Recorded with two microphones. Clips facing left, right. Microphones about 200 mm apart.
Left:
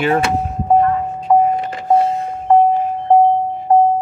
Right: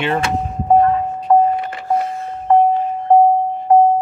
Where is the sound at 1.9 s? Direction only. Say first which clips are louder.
Left 5 dB; 20° left (ahead or behind).